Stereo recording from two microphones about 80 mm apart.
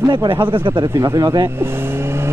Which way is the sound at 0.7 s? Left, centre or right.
Right.